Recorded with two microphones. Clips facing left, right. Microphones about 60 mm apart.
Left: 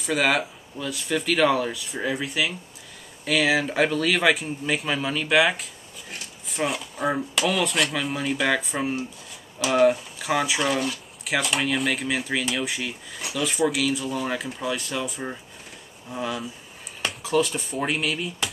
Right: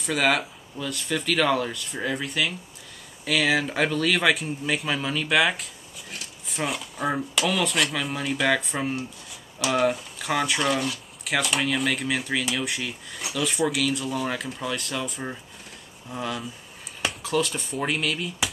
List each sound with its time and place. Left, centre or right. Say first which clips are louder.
0.0 s speech: left 1 dB; centre